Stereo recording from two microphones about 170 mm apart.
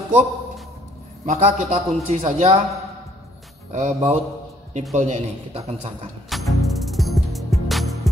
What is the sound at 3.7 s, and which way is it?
Mantra, 40° right (ahead or behind).